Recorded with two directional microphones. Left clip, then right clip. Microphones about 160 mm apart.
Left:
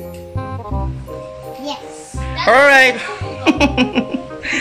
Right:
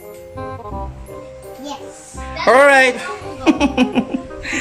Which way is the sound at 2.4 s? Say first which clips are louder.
Left 1 dB; centre (ahead or behind).